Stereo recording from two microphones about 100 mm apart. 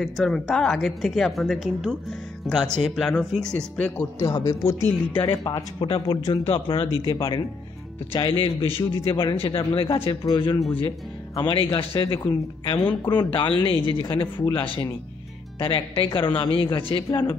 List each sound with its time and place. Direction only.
0.0 s a woman's voice: 5° left (ahead or behind)
4.2 s speech: 35° left (ahead or behind)
5.4 s speech: 45° left (ahead or behind)
6.4 s a man's voice: 60° left (ahead or behind)